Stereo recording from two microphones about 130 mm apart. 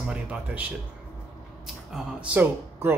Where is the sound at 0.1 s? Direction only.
10° right (ahead or behind).